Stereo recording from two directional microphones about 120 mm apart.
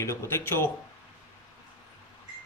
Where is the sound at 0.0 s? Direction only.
20° left (ahead or behind).